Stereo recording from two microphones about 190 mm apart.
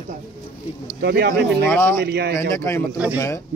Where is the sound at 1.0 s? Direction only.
55° right (ahead or behind).